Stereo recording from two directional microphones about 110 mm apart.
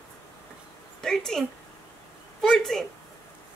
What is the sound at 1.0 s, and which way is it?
Speech, 5° left (ahead or behind).